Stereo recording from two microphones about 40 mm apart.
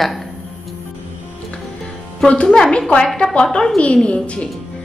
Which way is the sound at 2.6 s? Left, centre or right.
Left.